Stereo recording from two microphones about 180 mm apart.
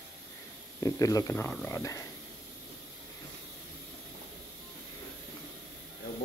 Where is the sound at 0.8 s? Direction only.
20° left (ahead or behind).